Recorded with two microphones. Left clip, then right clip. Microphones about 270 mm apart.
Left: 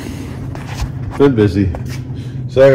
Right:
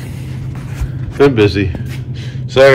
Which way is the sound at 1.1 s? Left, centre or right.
Centre.